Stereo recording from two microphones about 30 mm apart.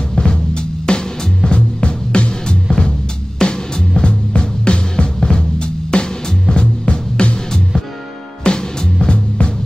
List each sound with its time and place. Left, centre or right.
0.2 s music: left
2.4 s music: left
4.1 s music: left
6.6 s music: left
8.5 s music: left